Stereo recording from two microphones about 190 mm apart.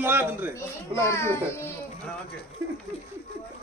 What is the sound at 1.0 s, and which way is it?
Speech, 15° left (ahead or behind).